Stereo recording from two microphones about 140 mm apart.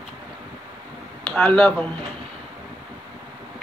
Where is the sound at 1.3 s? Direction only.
5° left (ahead or behind).